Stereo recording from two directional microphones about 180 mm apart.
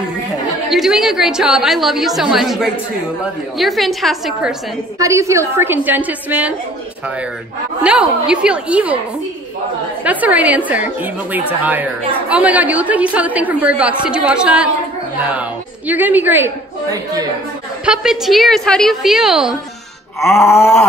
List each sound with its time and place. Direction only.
0.7 s a woman's voice: centre (ahead or behind)
4.9 s a woman's voice: 15° right (ahead or behind)
7.8 s a woman's voice: 5° right (ahead or behind)
10.0 s a woman's voice: 10° right (ahead or behind)
15.9 s a woman's voice: 10° right (ahead or behind)
17.8 s a woman's voice: 5° right (ahead or behind)
20.2 s groan: 15° left (ahead or behind)